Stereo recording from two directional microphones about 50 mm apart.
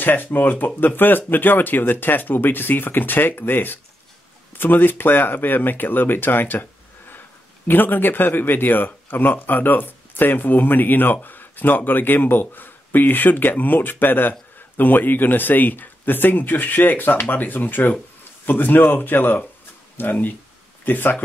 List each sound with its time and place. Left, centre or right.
0.0 s speech: left